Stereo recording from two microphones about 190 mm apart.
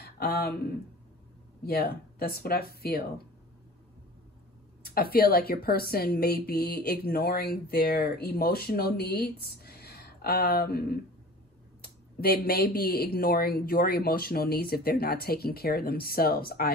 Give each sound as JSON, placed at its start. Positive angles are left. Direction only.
{"t": 0.0, "sound": "speech", "side_deg": 50}
{"t": 1.6, "sound": "speech", "side_deg": 55}
{"t": 4.8, "sound": "speech", "side_deg": 55}
{"t": 9.6, "sound": "a sound", "side_deg": 55}
{"t": 11.8, "sound": "speech", "side_deg": 55}